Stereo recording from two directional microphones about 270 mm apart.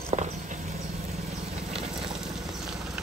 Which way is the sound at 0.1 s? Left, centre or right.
Right.